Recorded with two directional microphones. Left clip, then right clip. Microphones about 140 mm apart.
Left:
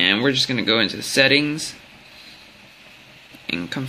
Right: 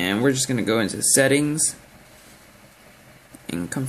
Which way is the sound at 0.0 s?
25° right (ahead or behind).